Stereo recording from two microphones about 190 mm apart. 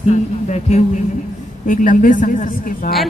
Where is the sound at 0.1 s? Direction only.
35° left (ahead or behind).